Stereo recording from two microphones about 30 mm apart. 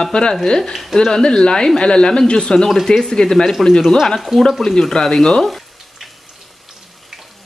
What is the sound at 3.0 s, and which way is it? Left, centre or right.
Speech, centre.